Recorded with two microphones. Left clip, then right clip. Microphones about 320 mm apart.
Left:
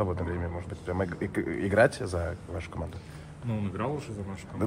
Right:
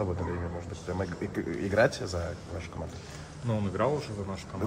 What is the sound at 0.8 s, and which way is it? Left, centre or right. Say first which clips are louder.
Speech: left 3 dB; left.